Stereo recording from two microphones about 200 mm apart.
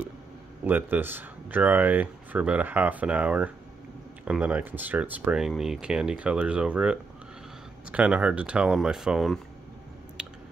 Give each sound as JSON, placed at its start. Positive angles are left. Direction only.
{"t": 0.7, "sound": "speech", "side_deg": -10}